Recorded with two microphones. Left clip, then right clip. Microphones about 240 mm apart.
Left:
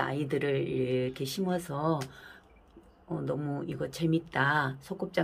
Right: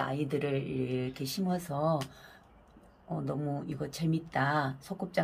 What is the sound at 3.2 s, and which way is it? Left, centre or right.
Speech, centre.